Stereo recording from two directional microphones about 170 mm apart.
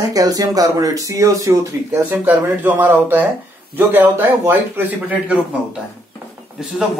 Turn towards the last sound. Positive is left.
turn(degrees=0)  # may be behind; listen again after turning